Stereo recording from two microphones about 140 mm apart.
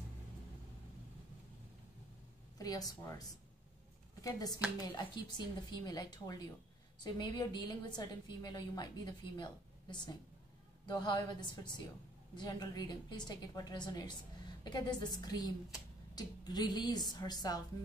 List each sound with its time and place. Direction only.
2.6 s a woman's voice: 25° left (ahead or behind)